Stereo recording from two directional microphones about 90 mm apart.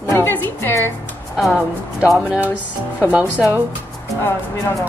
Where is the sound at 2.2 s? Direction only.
10° right (ahead or behind).